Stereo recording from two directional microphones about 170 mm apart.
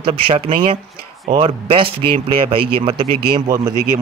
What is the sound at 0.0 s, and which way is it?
Speech, 35° right (ahead or behind).